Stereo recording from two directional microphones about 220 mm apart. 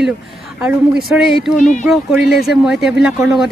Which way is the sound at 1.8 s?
Centre (ahead or behind).